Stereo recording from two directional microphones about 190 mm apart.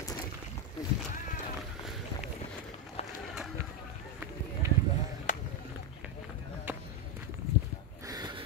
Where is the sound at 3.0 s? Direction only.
35° left (ahead or behind).